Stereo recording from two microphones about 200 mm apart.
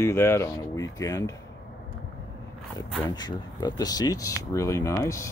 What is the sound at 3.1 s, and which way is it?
Speech, 20° left (ahead or behind).